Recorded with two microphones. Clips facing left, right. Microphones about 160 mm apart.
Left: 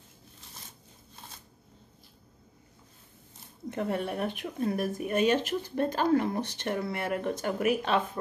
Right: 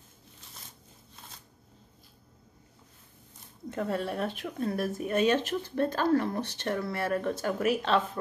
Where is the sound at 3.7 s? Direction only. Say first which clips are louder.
Even; 20° left (ahead or behind).